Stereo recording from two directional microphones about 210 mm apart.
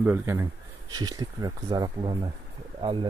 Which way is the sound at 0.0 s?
10° right (ahead or behind).